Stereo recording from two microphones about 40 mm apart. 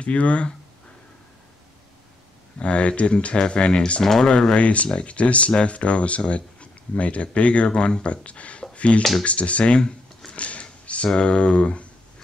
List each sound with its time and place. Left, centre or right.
0.0 s speech: left
2.6 s speech: left
4.0 s speech: centre
4.6 s speech: left
8.7 s a sound: left
9.2 s speech: left
10.3 s a sound: left
11.1 s speech: left